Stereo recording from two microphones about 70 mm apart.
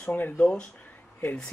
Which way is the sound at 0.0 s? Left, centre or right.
Left.